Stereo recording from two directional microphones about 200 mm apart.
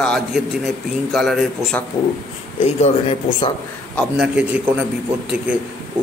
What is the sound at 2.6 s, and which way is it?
Speech, 30° left (ahead or behind).